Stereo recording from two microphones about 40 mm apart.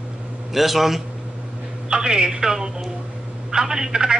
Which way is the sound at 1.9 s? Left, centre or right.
Centre.